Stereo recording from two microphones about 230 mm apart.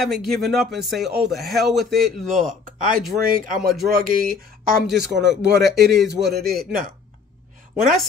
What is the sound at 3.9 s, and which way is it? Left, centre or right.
Speech, right.